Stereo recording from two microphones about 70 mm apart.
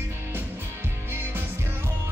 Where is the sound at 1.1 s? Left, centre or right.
Right.